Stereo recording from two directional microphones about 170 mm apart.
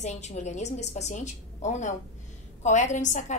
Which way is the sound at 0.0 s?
40° left (ahead or behind).